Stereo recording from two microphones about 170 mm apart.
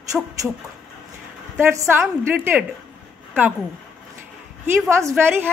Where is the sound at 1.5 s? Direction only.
15° right (ahead or behind).